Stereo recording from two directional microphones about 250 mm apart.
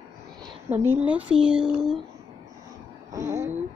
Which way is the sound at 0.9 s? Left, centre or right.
Centre.